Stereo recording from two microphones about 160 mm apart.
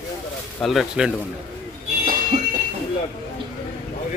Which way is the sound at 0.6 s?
Centre (ahead or behind).